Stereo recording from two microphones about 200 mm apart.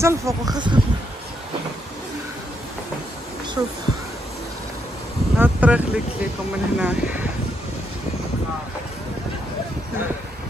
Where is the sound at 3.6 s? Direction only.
15° right (ahead or behind).